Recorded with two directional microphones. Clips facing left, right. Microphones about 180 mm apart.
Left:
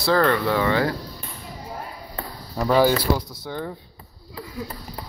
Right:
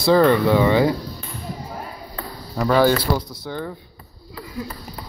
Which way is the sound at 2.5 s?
10° left (ahead or behind).